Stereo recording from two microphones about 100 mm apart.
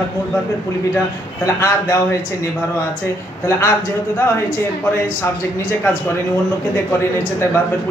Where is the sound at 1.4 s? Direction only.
30° left (ahead or behind).